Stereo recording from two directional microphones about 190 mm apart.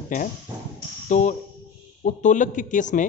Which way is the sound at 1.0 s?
40° left (ahead or behind).